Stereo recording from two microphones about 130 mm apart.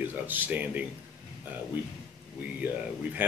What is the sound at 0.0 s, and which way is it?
Speech, 15° right (ahead or behind).